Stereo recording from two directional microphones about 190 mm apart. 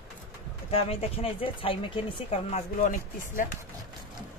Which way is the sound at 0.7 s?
30° left (ahead or behind).